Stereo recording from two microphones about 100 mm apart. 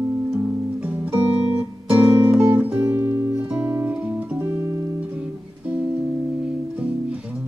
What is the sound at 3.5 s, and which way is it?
Music, 15° right (ahead or behind).